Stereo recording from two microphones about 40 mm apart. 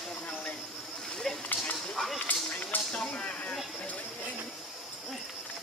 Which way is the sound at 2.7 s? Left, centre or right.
Left.